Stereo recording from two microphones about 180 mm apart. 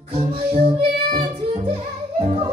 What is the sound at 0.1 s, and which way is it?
Music, 30° right (ahead or behind).